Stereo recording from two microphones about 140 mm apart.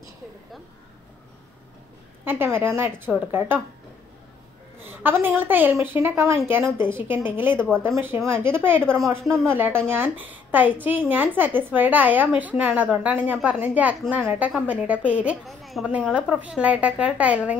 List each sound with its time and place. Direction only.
2.2 s a woman's voice: 15° right (ahead or behind)
4.8 s a woman's voice: 15° right (ahead or behind)
9.2 s speech: centre (ahead or behind)
9.5 s a woman's voice: 15° right (ahead or behind)